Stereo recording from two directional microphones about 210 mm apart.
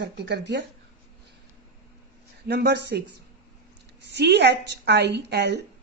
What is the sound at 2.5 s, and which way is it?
Speech, 50° right (ahead or behind).